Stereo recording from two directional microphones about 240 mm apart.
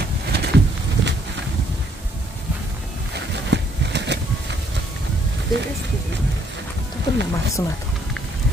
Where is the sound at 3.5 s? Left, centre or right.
Right.